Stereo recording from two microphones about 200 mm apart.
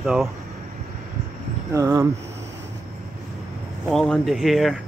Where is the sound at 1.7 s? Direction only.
15° right (ahead or behind).